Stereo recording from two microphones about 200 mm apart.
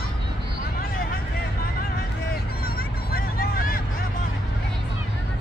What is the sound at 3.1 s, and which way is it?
Vehicle, 50° left (ahead or behind).